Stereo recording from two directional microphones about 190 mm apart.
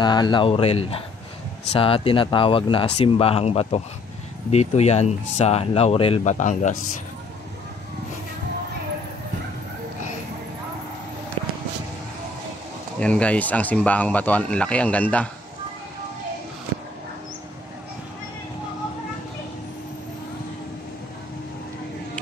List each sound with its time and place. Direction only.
0.0 s speech: 20° left (ahead or behind); by 6.8 s 40° left (ahead or behind)
13.0 s speech: 5° left (ahead or behind)